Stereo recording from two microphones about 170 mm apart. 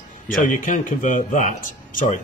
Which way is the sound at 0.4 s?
50° left (ahead or behind).